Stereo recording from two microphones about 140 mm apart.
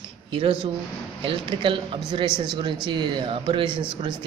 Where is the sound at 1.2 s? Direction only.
40° right (ahead or behind).